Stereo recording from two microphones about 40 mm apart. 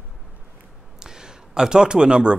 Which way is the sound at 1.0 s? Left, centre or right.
Centre.